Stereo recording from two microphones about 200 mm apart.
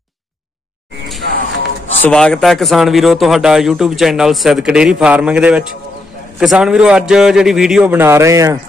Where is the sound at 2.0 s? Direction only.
5° left (ahead or behind).